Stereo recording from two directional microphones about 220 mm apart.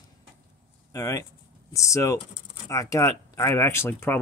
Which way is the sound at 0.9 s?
15° left (ahead or behind).